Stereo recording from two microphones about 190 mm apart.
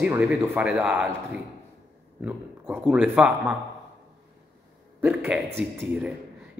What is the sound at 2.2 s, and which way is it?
Speech, 5° right (ahead or behind).